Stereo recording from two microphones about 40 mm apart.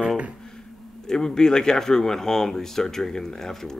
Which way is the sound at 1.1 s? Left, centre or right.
Centre.